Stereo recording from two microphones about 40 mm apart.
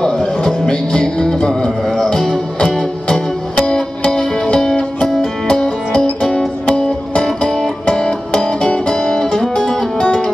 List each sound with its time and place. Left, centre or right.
0.5 s music: centre